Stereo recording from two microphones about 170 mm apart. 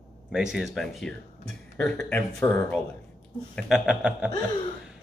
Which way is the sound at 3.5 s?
5° right (ahead or behind).